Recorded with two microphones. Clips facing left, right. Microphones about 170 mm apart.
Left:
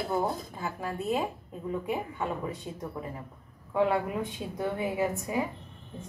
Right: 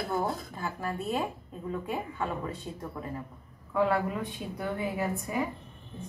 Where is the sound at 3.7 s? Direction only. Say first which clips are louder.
Even; 20° left (ahead or behind).